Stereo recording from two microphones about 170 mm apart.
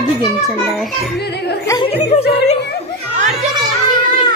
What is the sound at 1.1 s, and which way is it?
Speech, 75° left (ahead or behind).